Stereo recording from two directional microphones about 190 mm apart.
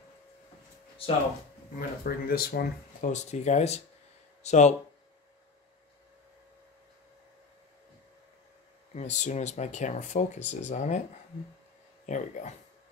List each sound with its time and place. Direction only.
1.8 s speech: 50° left (ahead or behind)
3.1 s speech: 40° left (ahead or behind)
8.9 s speech: 35° left (ahead or behind)
12.1 s speech: 40° left (ahead or behind)